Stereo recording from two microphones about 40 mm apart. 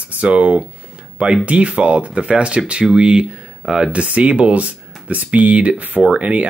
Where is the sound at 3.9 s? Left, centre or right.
Right.